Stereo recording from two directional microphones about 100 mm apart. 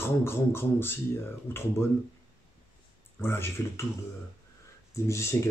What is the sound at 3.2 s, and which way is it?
Speech, 25° left (ahead or behind).